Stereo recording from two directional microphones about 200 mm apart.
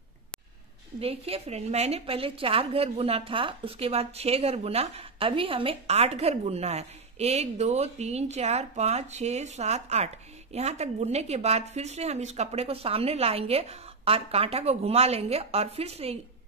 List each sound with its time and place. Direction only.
0.9 s a woman's voice: 30° right (ahead or behind)